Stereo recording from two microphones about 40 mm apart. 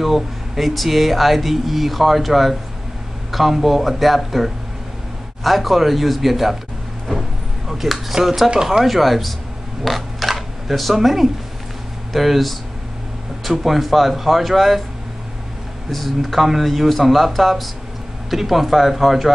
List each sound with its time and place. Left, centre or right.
0.0 s speech: centre
7.1 s a sound: centre
8.5 s speech: centre
8.8 s speech: centre
9.8 s camera: centre
12.1 s speech: centre
15.9 s speech: centre